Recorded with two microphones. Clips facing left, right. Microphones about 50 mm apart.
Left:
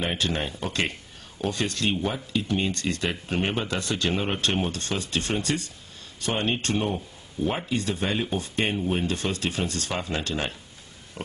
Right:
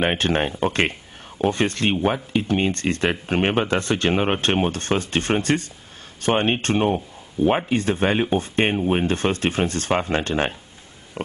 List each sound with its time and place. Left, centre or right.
0.0 s speech: right
11.2 s pig: right